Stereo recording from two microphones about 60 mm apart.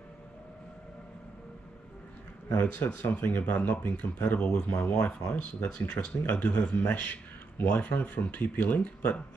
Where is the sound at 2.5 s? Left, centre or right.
Left.